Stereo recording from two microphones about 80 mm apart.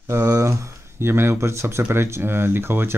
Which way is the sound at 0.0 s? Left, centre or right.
Right.